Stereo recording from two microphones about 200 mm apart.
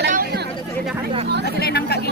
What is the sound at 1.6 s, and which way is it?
Speech, 55° left (ahead or behind).